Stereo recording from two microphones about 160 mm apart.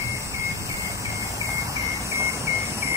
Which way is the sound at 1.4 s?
20° right (ahead or behind).